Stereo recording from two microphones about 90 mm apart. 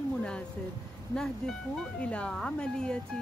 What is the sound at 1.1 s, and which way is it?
Speech, 5° left (ahead or behind).